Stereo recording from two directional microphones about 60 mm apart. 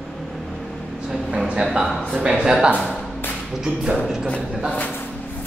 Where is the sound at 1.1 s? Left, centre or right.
Centre.